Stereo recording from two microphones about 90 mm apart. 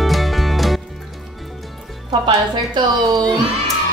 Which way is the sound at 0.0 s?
Centre (ahead or behind).